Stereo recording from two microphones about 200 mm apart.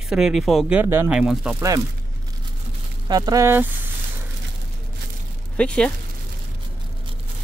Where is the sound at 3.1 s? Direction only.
20° right (ahead or behind).